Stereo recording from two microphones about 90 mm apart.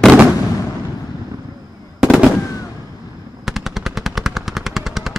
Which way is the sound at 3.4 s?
5° right (ahead or behind).